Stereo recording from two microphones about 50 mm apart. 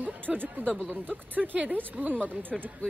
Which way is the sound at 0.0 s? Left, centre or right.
Right.